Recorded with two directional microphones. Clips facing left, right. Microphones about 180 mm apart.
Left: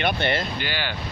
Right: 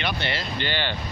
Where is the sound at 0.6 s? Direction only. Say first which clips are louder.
Right 2 dB; 10° left (ahead or behind).